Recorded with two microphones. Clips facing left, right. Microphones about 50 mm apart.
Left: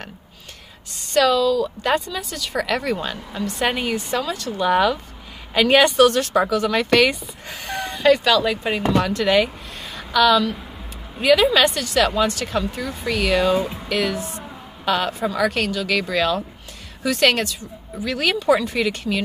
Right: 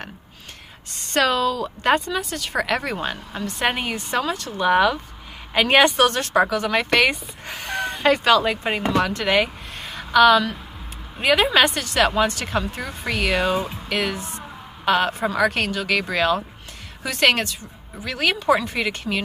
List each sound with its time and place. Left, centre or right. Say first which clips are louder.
0.9 s speech: left 3 dB; right
2.6 s speech: left 2 dB; centre
3.9 s speech: even; right
4.6 s speech: right 1 dB; centre
13.6 s music: left 3 dB; centre
13.8 s speech: left 2 dB; centre
14.4 s music: right 1 dB; right
15.3 s speech: left 1 dB; centre